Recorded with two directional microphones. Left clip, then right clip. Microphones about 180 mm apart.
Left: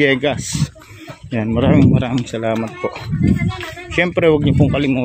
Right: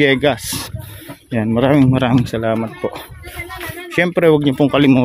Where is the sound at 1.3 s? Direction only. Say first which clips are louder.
Right 2 dB; 15° right (ahead or behind).